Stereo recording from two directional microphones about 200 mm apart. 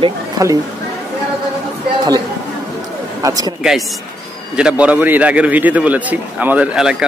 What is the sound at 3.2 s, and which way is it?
Speech, 20° right (ahead or behind).